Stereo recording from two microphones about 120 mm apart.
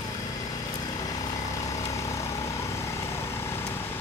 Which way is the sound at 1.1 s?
30° left (ahead or behind).